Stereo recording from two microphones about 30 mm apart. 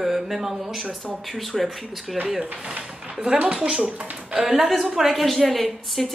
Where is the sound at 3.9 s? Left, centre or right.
Right.